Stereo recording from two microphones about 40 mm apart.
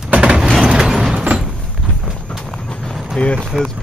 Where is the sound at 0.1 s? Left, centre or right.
Right.